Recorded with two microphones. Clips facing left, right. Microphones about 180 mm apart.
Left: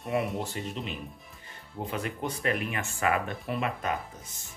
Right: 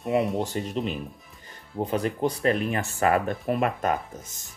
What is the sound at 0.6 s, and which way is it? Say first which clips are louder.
Speech: right 6 dB; 40° right (ahead or behind).